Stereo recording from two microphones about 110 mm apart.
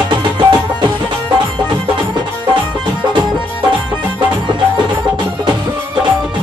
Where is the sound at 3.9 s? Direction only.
45° right (ahead or behind).